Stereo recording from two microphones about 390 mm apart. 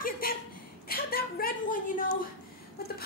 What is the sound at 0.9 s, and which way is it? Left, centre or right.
A woman's voice, left.